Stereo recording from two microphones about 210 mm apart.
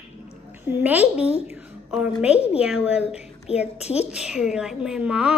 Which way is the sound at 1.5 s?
5° right (ahead or behind).